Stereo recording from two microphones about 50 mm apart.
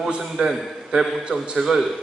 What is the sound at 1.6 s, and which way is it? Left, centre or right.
Speech, centre.